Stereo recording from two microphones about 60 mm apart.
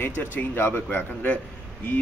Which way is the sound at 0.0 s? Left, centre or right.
Left.